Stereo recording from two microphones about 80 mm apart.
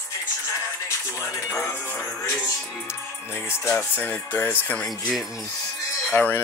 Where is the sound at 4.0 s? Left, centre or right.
Left.